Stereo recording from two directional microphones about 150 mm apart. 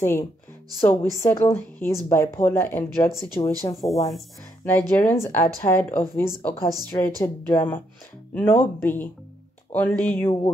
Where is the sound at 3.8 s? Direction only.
50° left (ahead or behind).